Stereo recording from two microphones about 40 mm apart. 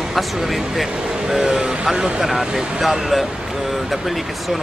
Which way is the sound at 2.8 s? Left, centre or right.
Centre.